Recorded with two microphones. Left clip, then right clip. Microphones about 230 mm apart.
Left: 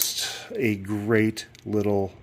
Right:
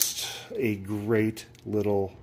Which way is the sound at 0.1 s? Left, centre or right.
Left.